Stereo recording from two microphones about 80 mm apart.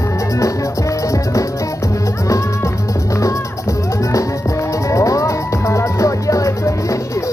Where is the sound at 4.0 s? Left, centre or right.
Left.